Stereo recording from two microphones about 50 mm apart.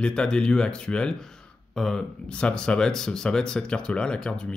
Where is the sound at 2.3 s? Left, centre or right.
Left.